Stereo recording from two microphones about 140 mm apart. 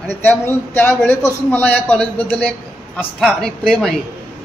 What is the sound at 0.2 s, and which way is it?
A man's voice, 15° left (ahead or behind).